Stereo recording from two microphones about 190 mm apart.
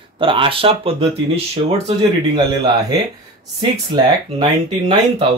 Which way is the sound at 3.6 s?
25° right (ahead or behind).